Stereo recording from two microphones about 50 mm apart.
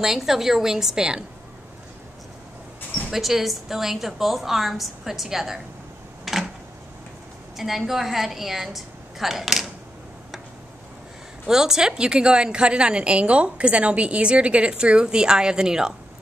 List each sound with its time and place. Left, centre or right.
0.0 s a woman's voice: centre
3.1 s a woman's voice: centre
6.3 s a sound: centre
7.5 s a woman's voice: centre
11.4 s a woman's voice: centre